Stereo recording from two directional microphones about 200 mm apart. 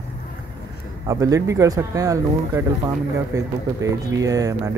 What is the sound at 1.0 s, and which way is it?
Speech, 15° right (ahead or behind).